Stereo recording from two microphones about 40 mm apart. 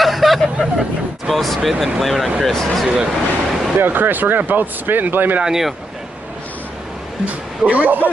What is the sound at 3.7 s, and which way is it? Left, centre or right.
Speech, right.